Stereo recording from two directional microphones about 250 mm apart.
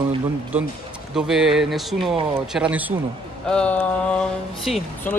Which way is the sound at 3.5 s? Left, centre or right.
Centre.